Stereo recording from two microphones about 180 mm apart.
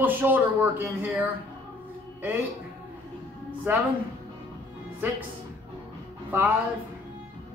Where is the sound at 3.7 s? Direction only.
10° right (ahead or behind).